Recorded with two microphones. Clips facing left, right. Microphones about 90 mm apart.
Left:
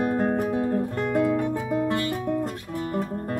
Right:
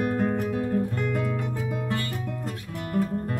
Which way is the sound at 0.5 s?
25° left (ahead or behind).